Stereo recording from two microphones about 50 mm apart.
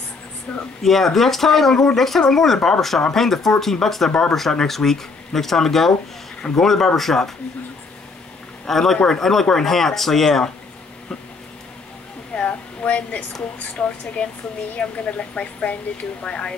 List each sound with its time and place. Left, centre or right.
0.5 s speech: left
0.8 s speech: centre
8.6 s speech: centre
12.4 s a woman's voice: left